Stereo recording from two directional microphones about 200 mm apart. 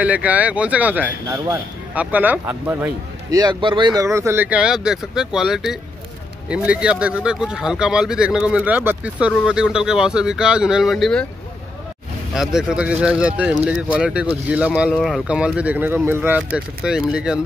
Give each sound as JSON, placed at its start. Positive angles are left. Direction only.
{"t": 0.0, "sound": "speech", "side_deg": -5}
{"t": 12.4, "sound": "speech", "side_deg": -5}